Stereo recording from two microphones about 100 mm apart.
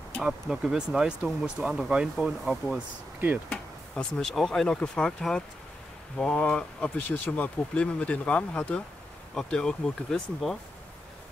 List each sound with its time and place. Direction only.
0.2 s speech: 5° right (ahead or behind)
3.4 s speech: 10° left (ahead or behind)